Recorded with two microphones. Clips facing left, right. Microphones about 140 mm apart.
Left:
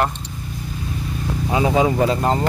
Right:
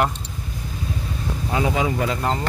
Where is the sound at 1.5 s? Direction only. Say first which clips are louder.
Left 5 dB; 20° left (ahead or behind).